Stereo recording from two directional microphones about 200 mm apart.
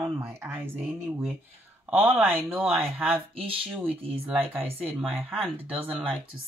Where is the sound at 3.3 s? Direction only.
25° right (ahead or behind).